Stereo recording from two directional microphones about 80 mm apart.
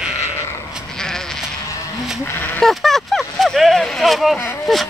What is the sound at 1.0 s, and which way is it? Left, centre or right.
Sheep, centre.